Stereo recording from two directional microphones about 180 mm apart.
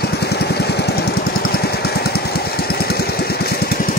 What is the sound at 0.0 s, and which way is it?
Jackhammer, 65° left (ahead or behind).